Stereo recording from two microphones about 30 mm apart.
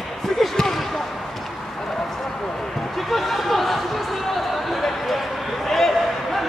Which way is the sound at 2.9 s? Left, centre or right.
Centre.